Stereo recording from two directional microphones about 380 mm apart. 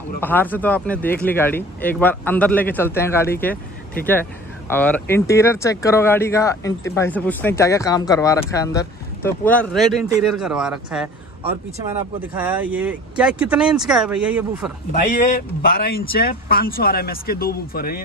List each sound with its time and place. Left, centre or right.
0.2 s speech: centre
4.6 s speech: centre
15.6 s speech: left